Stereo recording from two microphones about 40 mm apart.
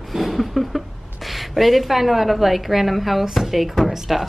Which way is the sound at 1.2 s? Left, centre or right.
Centre.